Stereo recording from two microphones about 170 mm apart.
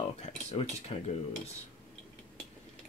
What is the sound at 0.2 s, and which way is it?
Speech, 40° left (ahead or behind).